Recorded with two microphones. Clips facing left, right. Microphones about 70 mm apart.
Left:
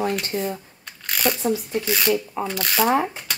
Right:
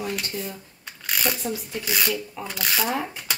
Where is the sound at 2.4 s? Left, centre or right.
Centre.